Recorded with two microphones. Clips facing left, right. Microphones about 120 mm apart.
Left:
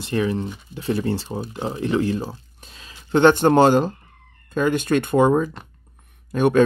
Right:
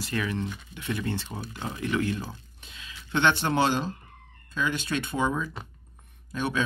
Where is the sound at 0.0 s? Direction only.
30° left (ahead or behind).